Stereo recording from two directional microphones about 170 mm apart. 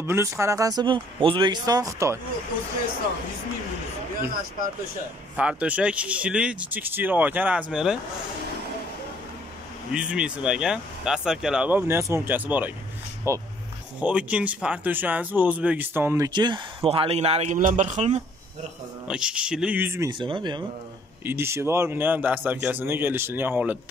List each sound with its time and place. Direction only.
0.0 s speech: 15° right (ahead or behind)
5.3 s speech: 5° right (ahead or behind)
9.9 s speech: 5° right (ahead or behind)
16.3 s speech: 25° right (ahead or behind)
19.0 s speech: 5° right (ahead or behind)
20.1 s speech: 30° right (ahead or behind)
21.2 s speech: 15° right (ahead or behind)